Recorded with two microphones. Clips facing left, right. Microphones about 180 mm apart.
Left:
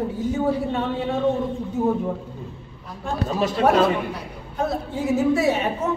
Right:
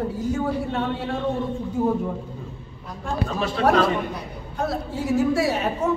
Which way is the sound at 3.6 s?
5° left (ahead or behind).